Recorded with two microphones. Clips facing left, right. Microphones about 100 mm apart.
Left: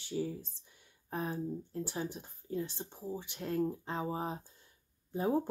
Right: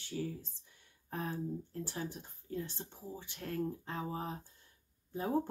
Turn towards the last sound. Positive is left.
turn(degrees=20)  # may be behind; listen again after turning